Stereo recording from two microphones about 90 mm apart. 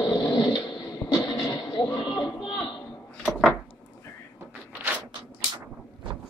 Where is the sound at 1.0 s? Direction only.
25° left (ahead or behind).